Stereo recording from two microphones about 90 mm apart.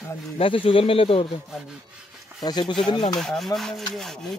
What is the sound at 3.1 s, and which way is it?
Speech, 5° left (ahead or behind).